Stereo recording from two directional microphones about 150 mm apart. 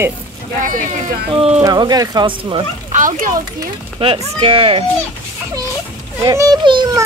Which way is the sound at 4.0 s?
35° right (ahead or behind).